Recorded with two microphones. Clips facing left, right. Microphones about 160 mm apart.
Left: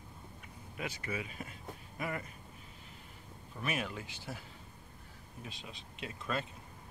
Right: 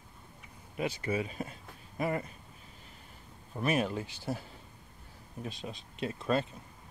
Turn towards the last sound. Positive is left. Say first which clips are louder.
# right 8 dB
turn(degrees=-35)  # may be behind; listen again after turning